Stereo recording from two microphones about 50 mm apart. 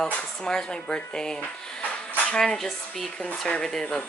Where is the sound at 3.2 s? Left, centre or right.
Left.